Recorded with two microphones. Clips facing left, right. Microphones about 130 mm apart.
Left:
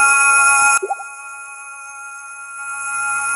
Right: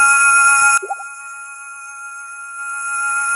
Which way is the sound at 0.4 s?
50° left (ahead or behind).